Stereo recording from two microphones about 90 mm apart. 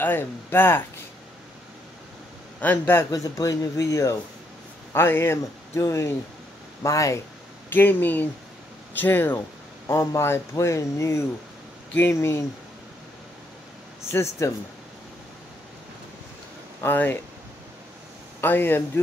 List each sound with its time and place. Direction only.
0.0 s a man's voice: 25° left (ahead or behind)
2.6 s a man's voice: 15° left (ahead or behind)
3.1 s a man's voice: 40° left (ahead or behind)
7.7 s a man's voice: 20° left (ahead or behind)
14.4 s speech: 35° left (ahead or behind)
16.8 s a man's voice: 25° left (ahead or behind)
18.4 s a man's voice: 25° left (ahead or behind)